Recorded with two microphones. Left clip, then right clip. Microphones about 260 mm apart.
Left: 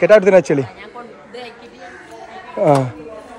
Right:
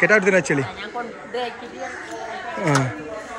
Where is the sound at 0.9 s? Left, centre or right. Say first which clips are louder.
Right 7 dB; right.